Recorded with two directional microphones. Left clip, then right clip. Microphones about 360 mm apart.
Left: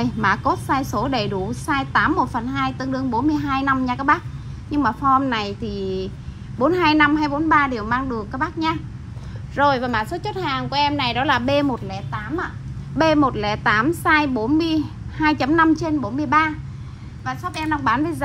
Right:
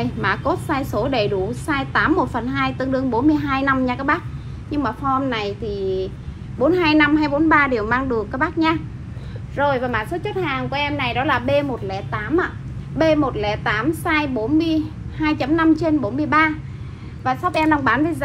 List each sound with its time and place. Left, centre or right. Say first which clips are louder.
0.0 s a woman's voice: left 2 dB; centre
9.6 s a woman's voice: left 1 dB; left
11.9 s a woman's voice: right 6 dB; centre
12.9 s a woman's voice: even; left
17.2 s a woman's voice: right 7 dB; centre
17.8 s a woman's voice: right 2 dB; centre